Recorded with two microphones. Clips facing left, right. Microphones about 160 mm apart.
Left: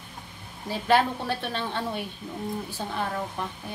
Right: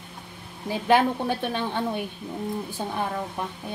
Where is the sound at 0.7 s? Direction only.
15° right (ahead or behind).